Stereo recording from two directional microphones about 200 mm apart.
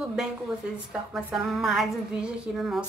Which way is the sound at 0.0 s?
5° right (ahead or behind).